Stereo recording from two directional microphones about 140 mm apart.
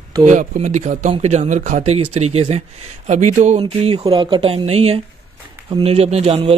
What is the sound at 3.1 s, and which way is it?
Speech, 60° right (ahead or behind).